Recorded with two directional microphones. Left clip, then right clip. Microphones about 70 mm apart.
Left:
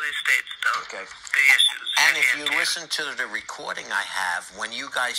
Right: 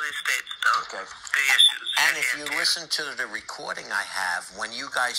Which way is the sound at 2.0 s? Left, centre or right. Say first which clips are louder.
Left 4 dB; centre.